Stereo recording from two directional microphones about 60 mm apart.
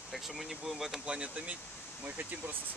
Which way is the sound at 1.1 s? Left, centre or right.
Centre.